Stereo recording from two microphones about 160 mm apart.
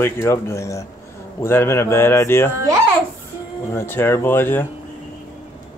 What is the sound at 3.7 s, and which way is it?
Speech, 15° left (ahead or behind).